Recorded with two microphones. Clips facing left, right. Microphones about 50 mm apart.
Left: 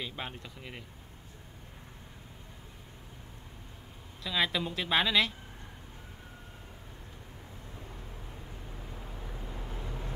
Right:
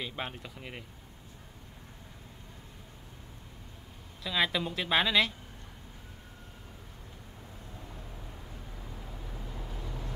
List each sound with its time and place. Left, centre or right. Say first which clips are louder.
0.0 s speech: right 2 dB; centre
4.2 s a woman's voice: right 1 dB; centre
8.9 s vehicle: even; centre